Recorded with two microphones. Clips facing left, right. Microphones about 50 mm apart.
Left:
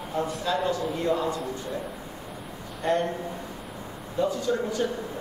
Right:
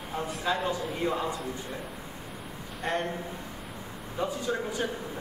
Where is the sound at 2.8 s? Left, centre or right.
Centre.